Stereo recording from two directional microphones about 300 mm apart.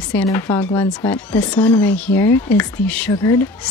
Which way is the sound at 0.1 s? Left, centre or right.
Centre.